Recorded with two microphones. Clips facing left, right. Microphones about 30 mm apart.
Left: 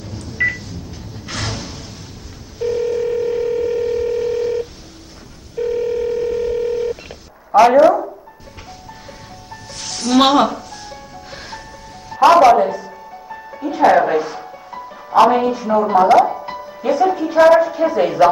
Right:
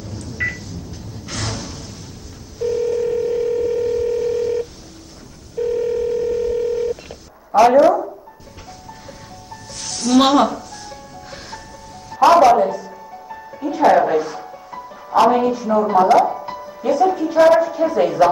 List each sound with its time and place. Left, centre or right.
0.0 s telephone dialing: centre
1.2 s a sound: centre
2.6 s telephone dialing: centre
9.5 s music: centre